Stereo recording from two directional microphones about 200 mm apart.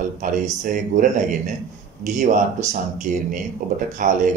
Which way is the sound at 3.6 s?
40° right (ahead or behind).